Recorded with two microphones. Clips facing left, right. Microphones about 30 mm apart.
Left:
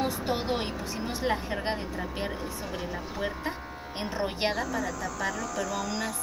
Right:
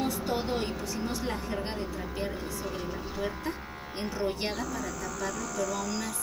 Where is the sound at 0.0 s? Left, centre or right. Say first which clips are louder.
Left 1 dB; left.